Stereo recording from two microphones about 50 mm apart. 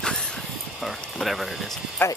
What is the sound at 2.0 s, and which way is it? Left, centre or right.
Speech, left.